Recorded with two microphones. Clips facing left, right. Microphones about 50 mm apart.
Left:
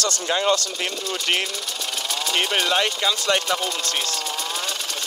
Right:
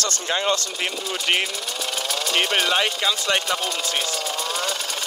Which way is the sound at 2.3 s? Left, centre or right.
Centre.